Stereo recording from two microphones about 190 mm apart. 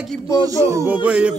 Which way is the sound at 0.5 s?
15° right (ahead or behind).